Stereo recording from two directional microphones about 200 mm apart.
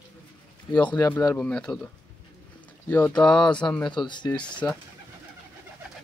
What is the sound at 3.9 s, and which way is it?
Speech, 20° left (ahead or behind).